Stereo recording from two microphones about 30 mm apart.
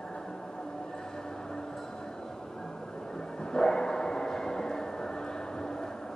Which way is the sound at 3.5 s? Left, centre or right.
Left.